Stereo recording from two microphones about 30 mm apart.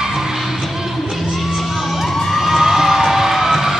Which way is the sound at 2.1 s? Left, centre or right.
Centre.